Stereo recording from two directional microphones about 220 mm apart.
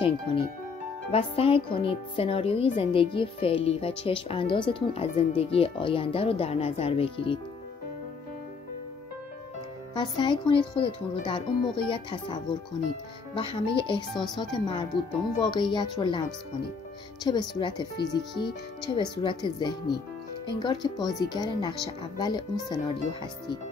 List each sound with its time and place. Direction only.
0.0 s speech: 25° left (ahead or behind)
9.9 s speech: 20° left (ahead or behind)
14.1 s speech: centre (ahead or behind)
14.4 s speech: 20° left (ahead or behind)